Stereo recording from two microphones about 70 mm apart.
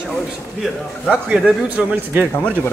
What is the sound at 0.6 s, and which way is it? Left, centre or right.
A man's voice, centre.